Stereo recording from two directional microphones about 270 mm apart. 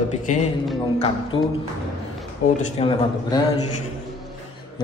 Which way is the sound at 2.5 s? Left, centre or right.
Left.